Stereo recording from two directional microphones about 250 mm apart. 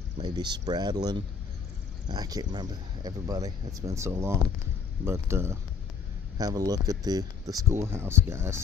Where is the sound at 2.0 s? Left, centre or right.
Centre.